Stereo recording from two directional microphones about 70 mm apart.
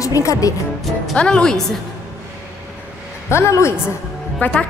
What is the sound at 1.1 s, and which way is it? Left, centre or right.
Speech, centre.